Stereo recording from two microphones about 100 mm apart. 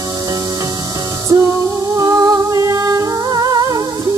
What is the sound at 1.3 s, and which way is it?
Music, 35° right (ahead or behind).